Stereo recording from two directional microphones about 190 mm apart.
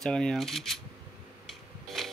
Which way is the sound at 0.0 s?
5° left (ahead or behind).